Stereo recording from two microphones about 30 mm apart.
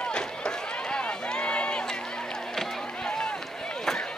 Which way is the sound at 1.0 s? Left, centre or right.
Left.